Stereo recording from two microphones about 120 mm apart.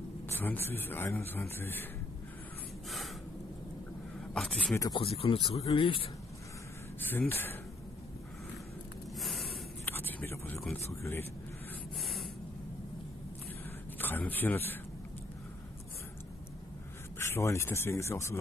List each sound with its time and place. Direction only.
0.3 s speech: 20° left (ahead or behind)
4.3 s a sound: 5° left (ahead or behind)
4.9 s speech: 55° left (ahead or behind)
7.0 s speech: 15° left (ahead or behind)
9.1 s snort: centre (ahead or behind)
9.8 s a sound: 15° left (ahead or behind)
10.9 s speech: 20° left (ahead or behind)
13.9 s speech: 15° left (ahead or behind)
17.2 s speech: 20° left (ahead or behind)